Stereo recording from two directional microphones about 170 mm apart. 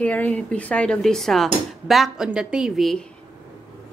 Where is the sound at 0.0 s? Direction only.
10° left (ahead or behind).